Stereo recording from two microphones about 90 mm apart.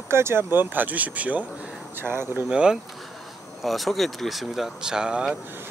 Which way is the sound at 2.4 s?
10° right (ahead or behind).